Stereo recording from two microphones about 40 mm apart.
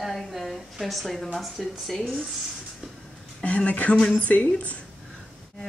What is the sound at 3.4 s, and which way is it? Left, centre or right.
Speech, left.